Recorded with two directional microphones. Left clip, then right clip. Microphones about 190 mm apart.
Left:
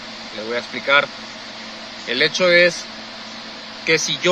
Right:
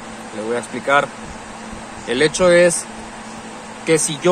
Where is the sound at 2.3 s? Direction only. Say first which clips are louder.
Right 2 dB; 15° right (ahead or behind).